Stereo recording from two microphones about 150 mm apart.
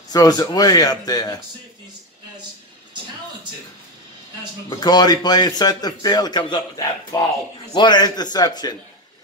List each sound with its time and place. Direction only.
0.1 s a man's voice: 25° left (ahead or behind)
4.6 s a man's voice: 25° left (ahead or behind)